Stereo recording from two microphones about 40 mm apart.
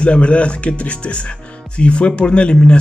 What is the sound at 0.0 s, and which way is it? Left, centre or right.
A man's voice, left.